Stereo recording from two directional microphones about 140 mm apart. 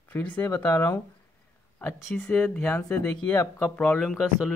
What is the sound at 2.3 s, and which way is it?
A man's voice, 15° left (ahead or behind).